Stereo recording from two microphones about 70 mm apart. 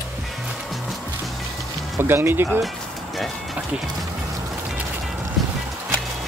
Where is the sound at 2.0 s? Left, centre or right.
Right.